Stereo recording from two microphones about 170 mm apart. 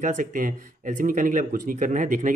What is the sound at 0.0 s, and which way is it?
Speech, 50° right (ahead or behind).